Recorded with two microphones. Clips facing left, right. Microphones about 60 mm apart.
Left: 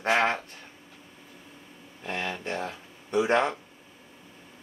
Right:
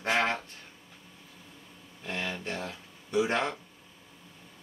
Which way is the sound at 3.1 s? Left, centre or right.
Centre.